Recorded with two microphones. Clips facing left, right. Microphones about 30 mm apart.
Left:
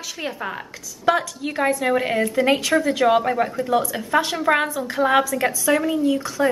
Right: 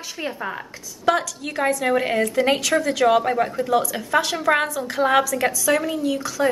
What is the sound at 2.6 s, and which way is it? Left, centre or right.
Speech, centre.